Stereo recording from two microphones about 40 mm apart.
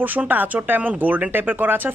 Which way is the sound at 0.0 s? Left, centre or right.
Right.